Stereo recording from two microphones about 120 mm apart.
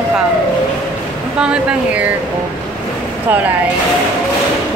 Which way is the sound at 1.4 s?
10° right (ahead or behind).